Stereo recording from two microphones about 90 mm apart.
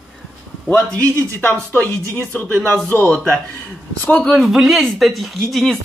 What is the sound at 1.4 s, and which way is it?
Speech, 20° left (ahead or behind).